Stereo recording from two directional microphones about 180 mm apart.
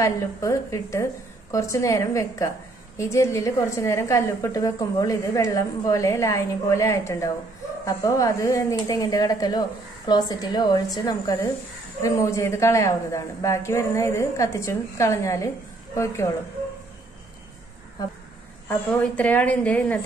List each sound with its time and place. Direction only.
0.0 s a woman's voice: 15° left (ahead or behind)
18.7 s a woman's voice: 10° left (ahead or behind)